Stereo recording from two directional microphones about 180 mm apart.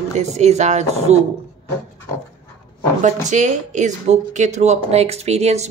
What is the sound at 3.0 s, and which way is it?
Speech, 40° right (ahead or behind).